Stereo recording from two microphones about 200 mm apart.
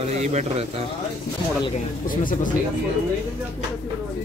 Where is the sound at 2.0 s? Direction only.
40° left (ahead or behind).